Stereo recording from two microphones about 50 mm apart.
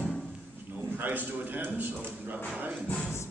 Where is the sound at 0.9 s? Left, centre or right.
Right.